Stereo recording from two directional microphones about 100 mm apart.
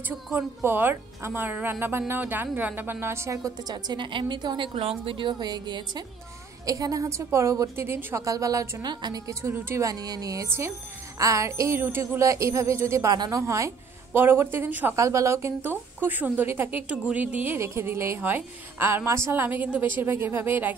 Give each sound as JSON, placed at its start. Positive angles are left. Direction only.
{"t": 0.7, "sound": "a woman's voice", "side_deg": -20}
{"t": 4.7, "sound": "a woman's voice", "side_deg": -70}
{"t": 9.3, "sound": "a woman's voice", "side_deg": -25}
{"t": 9.8, "sound": "a woman's voice", "side_deg": -40}
{"t": 13.1, "sound": "a woman's voice", "side_deg": -40}
{"t": 13.4, "sound": "a woman's voice", "side_deg": -30}
{"t": 15.0, "sound": "a woman's voice", "side_deg": -30}